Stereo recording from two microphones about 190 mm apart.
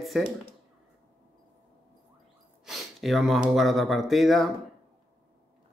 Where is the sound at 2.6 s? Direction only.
Centre (ahead or behind).